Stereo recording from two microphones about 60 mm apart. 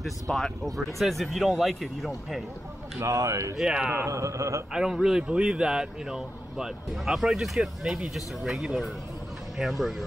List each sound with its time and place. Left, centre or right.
0.0 s speech: centre
3.1 s speech: right
3.5 s speech: centre
4.0 s speech: right
4.9 s speech: centre